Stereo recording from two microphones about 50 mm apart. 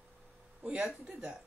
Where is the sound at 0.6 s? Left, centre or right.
Right.